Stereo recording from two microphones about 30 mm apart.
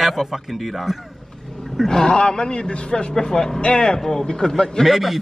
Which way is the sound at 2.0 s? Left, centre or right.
Left.